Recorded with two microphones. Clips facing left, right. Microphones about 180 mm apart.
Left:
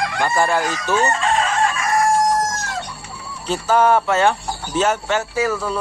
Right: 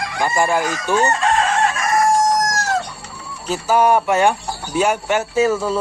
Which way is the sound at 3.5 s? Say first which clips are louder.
Even; 10° right (ahead or behind).